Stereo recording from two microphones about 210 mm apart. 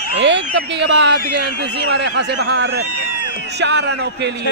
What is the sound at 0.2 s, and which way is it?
Speech, 60° right (ahead or behind).